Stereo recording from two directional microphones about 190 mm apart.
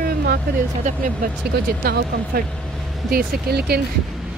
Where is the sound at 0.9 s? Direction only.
40° right (ahead or behind).